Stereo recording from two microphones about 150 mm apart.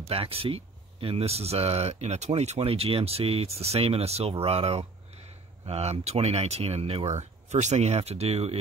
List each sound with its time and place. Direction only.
0.1 s speech: 40° right (ahead or behind)